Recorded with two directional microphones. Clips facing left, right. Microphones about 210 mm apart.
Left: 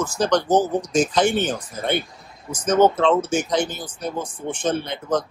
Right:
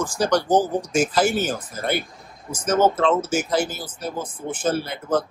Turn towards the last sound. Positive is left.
turn(degrees=-5)  # may be behind; listen again after turning